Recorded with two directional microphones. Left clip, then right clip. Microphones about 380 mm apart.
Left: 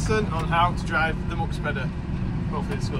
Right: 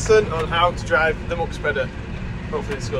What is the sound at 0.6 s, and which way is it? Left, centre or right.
Speech, centre.